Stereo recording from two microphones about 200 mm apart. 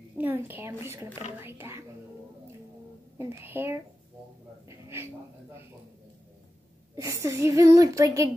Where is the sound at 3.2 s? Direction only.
10° right (ahead or behind).